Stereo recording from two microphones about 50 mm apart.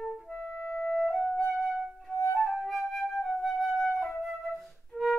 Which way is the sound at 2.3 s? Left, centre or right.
Centre.